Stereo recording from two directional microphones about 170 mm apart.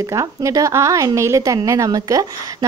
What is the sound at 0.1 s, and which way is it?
A woman's voice, 20° right (ahead or behind).